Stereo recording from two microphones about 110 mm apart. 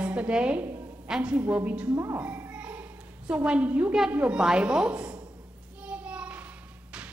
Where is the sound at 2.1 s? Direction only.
15° right (ahead or behind).